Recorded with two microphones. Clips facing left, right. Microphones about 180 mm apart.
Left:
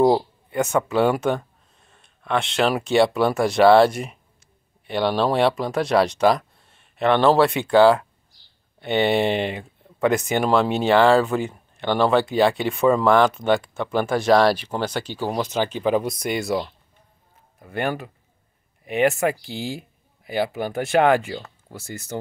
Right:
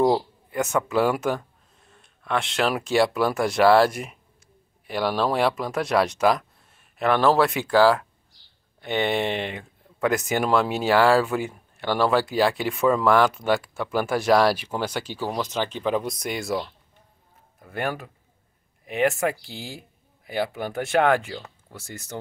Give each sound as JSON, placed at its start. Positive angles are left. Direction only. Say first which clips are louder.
{"t": 0.5, "sound": "speech", "louder": "left 3 dB", "side_deg": 0}
{"t": 8.8, "sound": "speech", "louder": "left 4 dB", "side_deg": 30}
{"t": 9.9, "sound": "speech", "louder": "left 3 dB", "side_deg": 0}